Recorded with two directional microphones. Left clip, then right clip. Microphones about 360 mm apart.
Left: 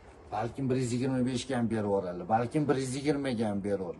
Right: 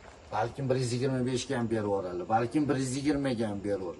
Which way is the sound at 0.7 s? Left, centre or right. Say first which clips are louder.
Right 2 dB; centre.